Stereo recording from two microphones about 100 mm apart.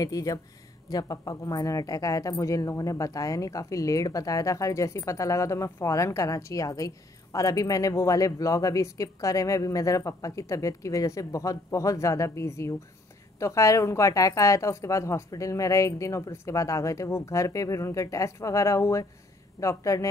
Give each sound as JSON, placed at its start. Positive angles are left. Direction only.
{"t": 0.0, "sound": "speech", "side_deg": 35}